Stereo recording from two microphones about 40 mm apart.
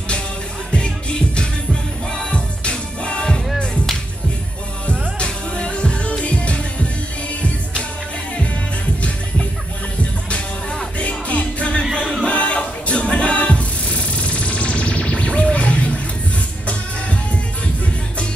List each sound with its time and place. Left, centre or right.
0.7 s music: left
4.8 s music: left
11.0 s music: left
12.3 s music: left